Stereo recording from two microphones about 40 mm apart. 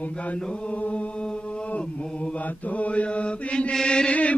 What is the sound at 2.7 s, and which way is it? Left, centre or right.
Chant, left.